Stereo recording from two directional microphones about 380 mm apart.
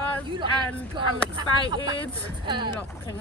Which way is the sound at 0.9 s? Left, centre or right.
Centre.